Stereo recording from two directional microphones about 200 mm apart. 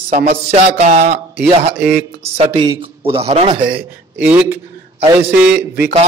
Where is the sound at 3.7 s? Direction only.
10° right (ahead or behind).